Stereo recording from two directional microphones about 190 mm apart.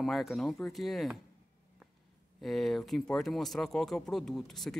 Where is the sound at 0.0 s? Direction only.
Centre (ahead or behind).